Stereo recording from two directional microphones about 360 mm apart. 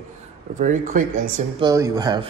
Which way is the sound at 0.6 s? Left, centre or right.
Right.